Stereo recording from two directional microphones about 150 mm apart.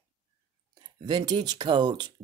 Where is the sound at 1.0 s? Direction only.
30° right (ahead or behind).